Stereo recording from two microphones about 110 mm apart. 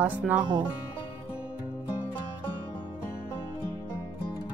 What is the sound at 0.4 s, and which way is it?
Speech, 40° right (ahead or behind).